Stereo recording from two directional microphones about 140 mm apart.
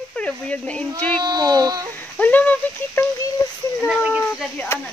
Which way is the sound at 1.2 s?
30° right (ahead or behind).